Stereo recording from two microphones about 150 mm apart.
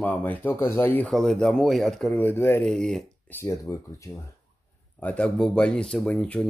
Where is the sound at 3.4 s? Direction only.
20° left (ahead or behind).